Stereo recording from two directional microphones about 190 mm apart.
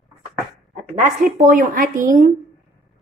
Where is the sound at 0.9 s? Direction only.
45° right (ahead or behind).